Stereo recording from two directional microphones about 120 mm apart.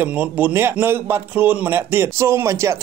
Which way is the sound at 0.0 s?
15° right (ahead or behind).